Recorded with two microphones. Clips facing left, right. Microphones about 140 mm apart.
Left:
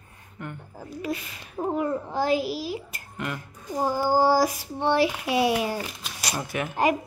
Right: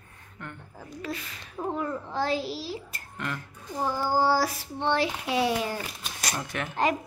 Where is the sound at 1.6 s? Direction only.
30° left (ahead or behind).